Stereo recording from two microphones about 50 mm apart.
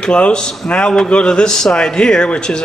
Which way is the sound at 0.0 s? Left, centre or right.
Centre.